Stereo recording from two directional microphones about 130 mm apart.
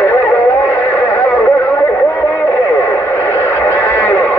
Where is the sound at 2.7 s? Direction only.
15° left (ahead or behind).